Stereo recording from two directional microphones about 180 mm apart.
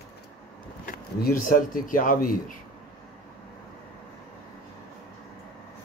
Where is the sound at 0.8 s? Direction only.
55° left (ahead or behind).